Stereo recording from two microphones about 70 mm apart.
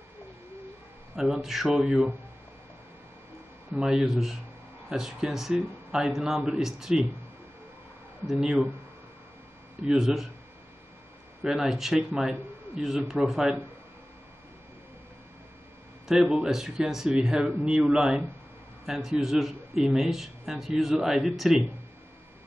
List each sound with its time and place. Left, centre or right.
1.1 s speech: centre
3.7 s speech: centre
8.3 s speech: centre
9.8 s speech: centre
11.4 s speech: centre
16.1 s speech: centre